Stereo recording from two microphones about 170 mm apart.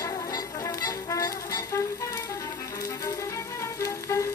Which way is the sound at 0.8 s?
20° left (ahead or behind).